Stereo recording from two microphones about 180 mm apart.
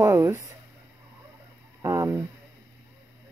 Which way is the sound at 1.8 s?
15° right (ahead or behind).